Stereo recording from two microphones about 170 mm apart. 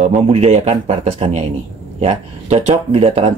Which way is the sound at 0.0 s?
40° right (ahead or behind).